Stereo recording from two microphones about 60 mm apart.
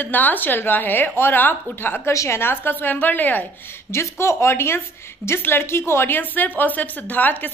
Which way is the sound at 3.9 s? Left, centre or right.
Left.